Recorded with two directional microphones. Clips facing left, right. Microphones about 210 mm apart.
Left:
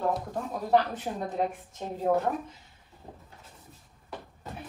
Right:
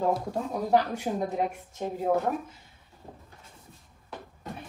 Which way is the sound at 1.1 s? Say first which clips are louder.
Right 4 dB; 5° right (ahead or behind).